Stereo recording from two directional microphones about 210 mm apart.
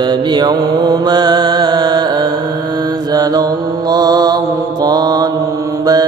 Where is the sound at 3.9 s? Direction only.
20° right (ahead or behind).